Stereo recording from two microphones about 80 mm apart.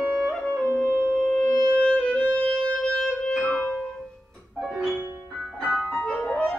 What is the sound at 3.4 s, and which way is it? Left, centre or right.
Music, left.